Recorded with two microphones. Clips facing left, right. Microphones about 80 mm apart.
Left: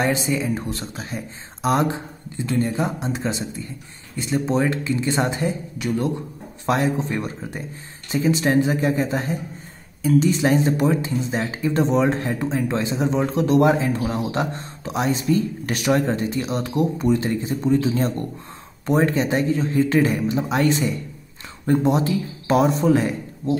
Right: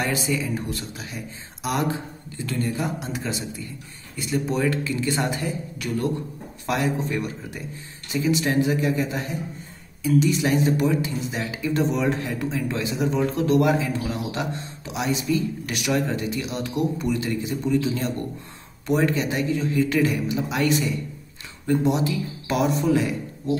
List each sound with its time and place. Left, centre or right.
0.0 s speech: left